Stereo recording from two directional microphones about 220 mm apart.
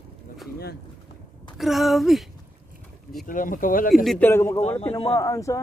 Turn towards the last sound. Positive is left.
turn(degrees=15)  # may be behind; listen again after turning